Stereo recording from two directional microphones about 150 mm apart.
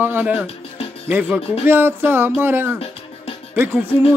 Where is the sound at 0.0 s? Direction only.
10° right (ahead or behind).